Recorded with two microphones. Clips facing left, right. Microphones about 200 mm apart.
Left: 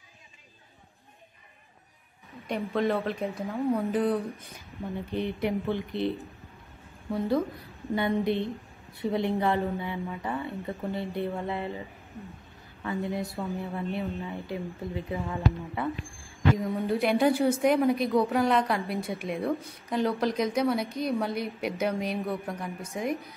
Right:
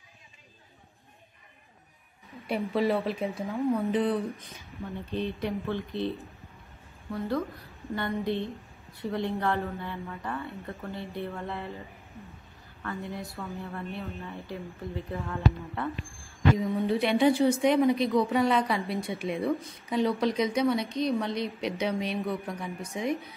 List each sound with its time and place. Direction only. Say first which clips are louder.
2.4 s a woman's voice: right 1 dB; 5° right (ahead or behind)
5.1 s a woman's voice: left 2 dB; 15° left (ahead or behind)
12.8 s a woman's voice: left 5 dB; 15° left (ahead or behind)
16.5 s a woman's voice: right 1 dB; centre (ahead or behind)